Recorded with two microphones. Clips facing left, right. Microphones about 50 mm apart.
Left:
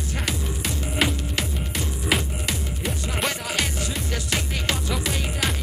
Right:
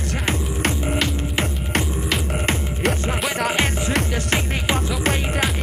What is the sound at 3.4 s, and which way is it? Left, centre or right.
Music, right.